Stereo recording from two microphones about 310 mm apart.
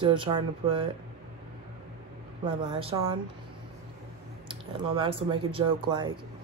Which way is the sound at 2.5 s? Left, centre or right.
Centre.